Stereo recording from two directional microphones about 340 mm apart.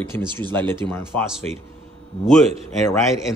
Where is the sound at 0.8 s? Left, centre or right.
Centre.